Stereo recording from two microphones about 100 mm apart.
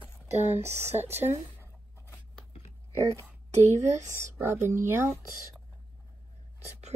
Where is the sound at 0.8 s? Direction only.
20° right (ahead or behind).